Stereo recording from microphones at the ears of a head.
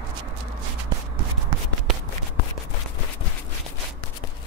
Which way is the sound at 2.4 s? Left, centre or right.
Left.